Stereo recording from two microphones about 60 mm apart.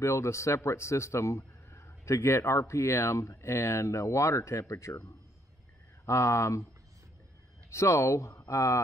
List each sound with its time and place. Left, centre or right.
0.0 s a man's voice: left
6.0 s speech: left
7.7 s speech: left